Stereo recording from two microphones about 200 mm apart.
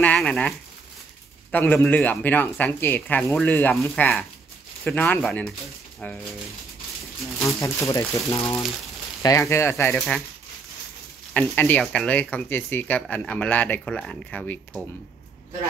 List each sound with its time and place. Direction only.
0.0 s a sound: 5° left (ahead or behind)
1.5 s speech: 10° left (ahead or behind)
7.4 s speech: 15° left (ahead or behind)
11.3 s speech: 10° left (ahead or behind)